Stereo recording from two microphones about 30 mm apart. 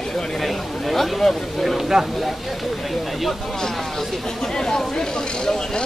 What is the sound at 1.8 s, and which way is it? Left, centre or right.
Speech, centre.